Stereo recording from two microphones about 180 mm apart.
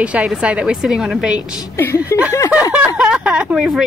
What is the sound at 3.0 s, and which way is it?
Speech, 5° right (ahead or behind).